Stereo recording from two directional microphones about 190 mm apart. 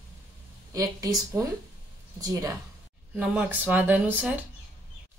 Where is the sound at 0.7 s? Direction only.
15° right (ahead or behind).